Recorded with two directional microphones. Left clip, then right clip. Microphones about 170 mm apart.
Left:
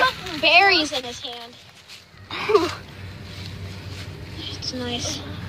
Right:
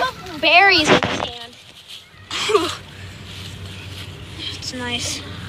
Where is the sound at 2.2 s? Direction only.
25° left (ahead or behind).